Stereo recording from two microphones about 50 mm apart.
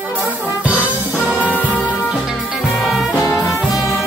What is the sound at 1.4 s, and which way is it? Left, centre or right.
Music, left.